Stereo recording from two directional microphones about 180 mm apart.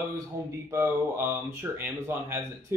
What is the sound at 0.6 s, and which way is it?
Speech, 15° right (ahead or behind).